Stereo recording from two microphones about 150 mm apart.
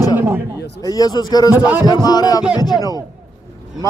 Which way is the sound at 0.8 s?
25° left (ahead or behind).